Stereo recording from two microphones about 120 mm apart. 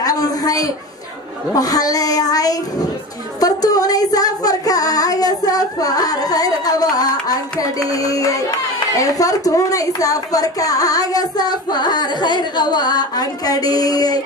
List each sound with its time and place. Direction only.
0.0 s a sound: 30° left (ahead or behind)
1.5 s a woman's voice: 30° left (ahead or behind)
3.3 s child singing: 30° left (ahead or behind)
7.6 s a woman's voice: 30° left (ahead or behind)